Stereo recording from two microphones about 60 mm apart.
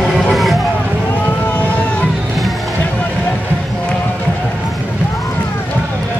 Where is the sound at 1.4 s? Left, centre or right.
Left.